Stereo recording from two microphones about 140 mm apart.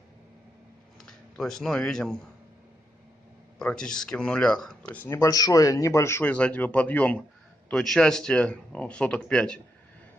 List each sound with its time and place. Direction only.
1.0 s speech: 5° left (ahead or behind)
3.5 s speech: 5° left (ahead or behind)
5.0 s speech: 20° left (ahead or behind)